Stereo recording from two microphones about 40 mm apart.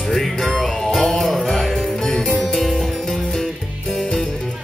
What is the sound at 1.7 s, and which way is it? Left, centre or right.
Music, centre.